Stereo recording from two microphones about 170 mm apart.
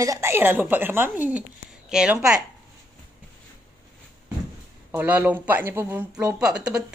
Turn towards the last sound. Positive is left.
turn(degrees=-5)  # may be behind; listen again after turning